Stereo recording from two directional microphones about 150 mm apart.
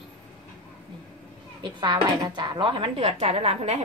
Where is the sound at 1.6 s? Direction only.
30° right (ahead or behind).